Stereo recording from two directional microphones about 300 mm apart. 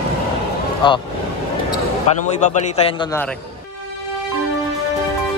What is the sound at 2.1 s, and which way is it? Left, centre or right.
Speech, left.